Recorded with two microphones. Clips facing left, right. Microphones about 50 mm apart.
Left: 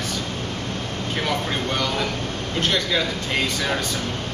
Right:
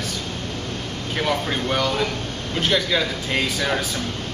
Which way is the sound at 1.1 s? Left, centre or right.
Centre.